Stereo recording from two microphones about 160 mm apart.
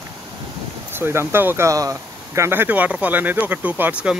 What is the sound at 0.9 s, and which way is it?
Speech, 15° right (ahead or behind).